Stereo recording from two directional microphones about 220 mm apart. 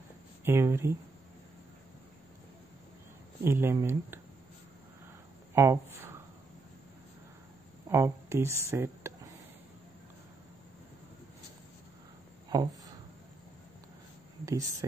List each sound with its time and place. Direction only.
0.5 s speech: 10° right (ahead or behind)
3.4 s speech: 10° right (ahead or behind)
5.5 s speech: 10° right (ahead or behind)
7.9 s speech: 10° right (ahead or behind)
12.5 s speech: 20° right (ahead or behind)
14.4 s speech: 15° right (ahead or behind)